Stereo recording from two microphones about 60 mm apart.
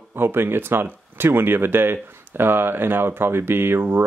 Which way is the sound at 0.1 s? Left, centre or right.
Right.